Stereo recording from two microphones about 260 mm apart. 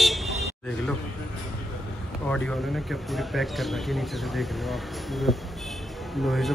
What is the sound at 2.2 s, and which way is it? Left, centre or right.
Speech, centre.